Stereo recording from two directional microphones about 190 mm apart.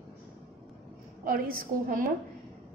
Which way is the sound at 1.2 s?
50° right (ahead or behind).